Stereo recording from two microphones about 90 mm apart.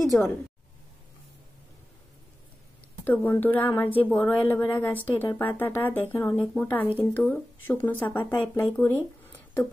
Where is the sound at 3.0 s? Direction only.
25° left (ahead or behind).